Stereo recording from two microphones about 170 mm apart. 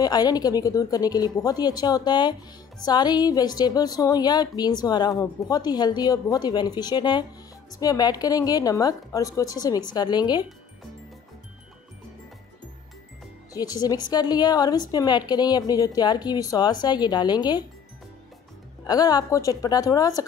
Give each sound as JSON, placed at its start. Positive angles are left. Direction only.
{"t": 0.0, "sound": "a woman's voice", "side_deg": 25}
{"t": 13.5, "sound": "a woman's voice", "side_deg": 20}
{"t": 18.9, "sound": "a woman's voice", "side_deg": 20}